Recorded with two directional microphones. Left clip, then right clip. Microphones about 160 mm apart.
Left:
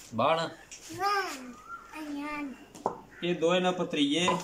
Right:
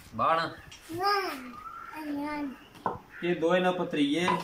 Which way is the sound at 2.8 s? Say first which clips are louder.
Even; 25° left (ahead or behind).